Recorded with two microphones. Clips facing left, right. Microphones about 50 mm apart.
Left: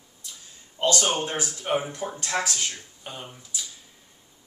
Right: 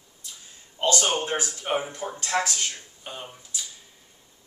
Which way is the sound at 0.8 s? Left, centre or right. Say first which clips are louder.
Even; centre.